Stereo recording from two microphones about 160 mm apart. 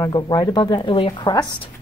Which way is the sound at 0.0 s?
25° left (ahead or behind).